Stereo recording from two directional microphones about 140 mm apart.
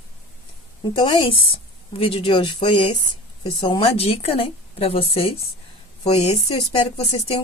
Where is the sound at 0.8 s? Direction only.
35° left (ahead or behind).